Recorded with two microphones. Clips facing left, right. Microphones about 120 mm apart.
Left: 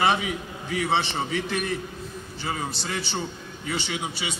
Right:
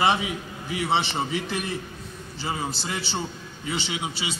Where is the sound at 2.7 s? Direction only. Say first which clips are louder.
Even; centre (ahead or behind).